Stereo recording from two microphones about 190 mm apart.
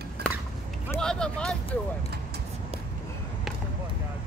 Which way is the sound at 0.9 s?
5° left (ahead or behind).